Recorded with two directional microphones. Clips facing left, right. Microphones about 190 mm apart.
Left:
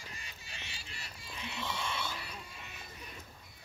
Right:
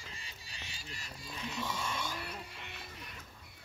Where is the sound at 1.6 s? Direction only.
10° right (ahead or behind).